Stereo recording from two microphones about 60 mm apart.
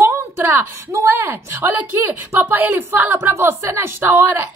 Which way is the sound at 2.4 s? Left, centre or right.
Right.